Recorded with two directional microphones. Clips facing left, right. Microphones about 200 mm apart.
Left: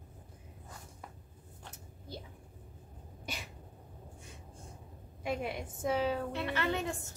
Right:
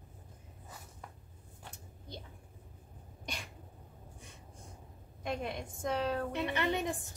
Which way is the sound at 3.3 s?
5° left (ahead or behind).